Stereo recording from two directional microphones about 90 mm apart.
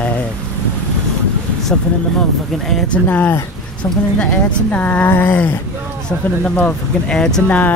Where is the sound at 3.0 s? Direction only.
20° left (ahead or behind).